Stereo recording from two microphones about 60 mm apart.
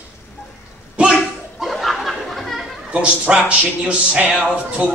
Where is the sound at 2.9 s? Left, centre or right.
Centre.